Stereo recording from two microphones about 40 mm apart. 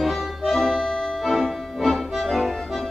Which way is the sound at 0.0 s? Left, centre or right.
Centre.